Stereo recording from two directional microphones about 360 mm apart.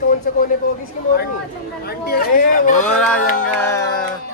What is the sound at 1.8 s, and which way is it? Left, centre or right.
Speech, left.